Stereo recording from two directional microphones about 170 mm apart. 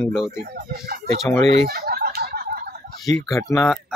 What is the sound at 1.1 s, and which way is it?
Speech, centre (ahead or behind).